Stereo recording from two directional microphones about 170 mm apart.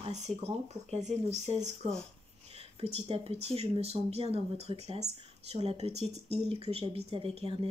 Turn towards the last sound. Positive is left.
turn(degrees=-35)  # may be behind; listen again after turning